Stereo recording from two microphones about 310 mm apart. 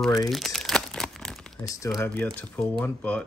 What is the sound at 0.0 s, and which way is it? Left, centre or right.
Speech, centre.